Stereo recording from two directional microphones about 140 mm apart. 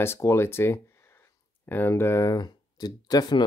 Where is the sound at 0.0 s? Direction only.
20° left (ahead or behind).